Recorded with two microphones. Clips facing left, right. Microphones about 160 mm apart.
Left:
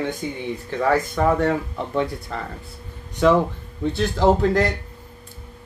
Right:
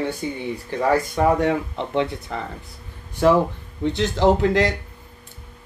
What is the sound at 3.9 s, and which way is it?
Speech, 20° right (ahead or behind).